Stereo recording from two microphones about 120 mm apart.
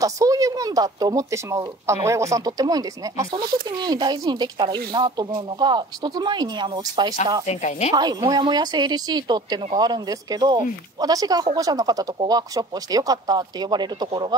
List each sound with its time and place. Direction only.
0.0 s speech: 30° right (ahead or behind)
7.4 s speech: 70° left (ahead or behind)
7.9 s speech: 35° right (ahead or behind)